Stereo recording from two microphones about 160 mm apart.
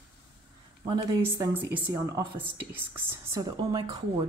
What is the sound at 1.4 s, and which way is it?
A woman's voice, 10° right (ahead or behind).